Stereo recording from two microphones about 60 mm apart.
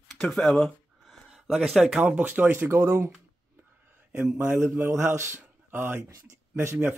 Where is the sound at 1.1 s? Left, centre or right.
Centre.